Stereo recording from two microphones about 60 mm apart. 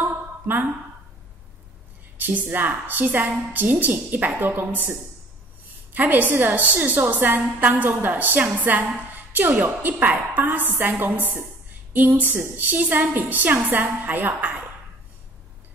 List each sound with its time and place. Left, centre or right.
0.0 s a sound: right
2.1 s a woman's voice: right
5.9 s a woman's voice: right